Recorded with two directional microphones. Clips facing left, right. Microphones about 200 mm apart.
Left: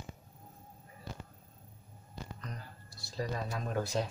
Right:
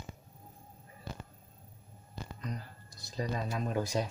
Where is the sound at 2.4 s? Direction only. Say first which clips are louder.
Right 5 dB; 15° right (ahead or behind).